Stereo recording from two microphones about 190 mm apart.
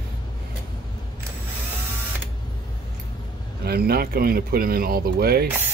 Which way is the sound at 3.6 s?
55° right (ahead or behind).